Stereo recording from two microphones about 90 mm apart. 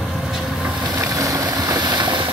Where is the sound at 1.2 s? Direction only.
45° right (ahead or behind).